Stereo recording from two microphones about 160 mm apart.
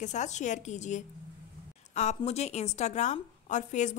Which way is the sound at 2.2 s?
40° left (ahead or behind).